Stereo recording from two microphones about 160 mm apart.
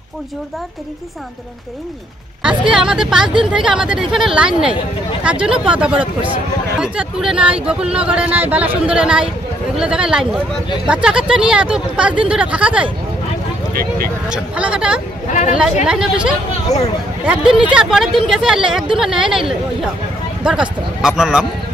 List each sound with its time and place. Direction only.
2.4 s speech: 5° right (ahead or behind)
14.3 s speech: 5° right (ahead or behind)
16.7 s speech: 20° left (ahead or behind)
17.3 s speech: 5° right (ahead or behind)
20.4 s speech: 5° right (ahead or behind)